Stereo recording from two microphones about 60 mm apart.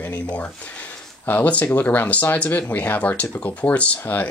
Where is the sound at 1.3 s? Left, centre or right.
Left.